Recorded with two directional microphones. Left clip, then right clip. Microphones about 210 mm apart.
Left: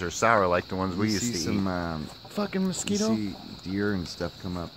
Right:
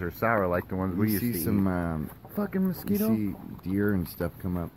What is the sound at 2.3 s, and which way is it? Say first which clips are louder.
Speech: left 2 dB; centre (ahead or behind).